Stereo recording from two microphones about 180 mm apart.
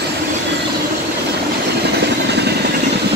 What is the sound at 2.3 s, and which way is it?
Vehicle, 65° right (ahead or behind).